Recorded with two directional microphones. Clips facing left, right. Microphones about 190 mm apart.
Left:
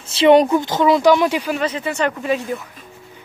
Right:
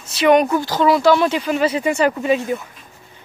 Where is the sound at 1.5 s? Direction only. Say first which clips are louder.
Right 4 dB; 10° right (ahead or behind).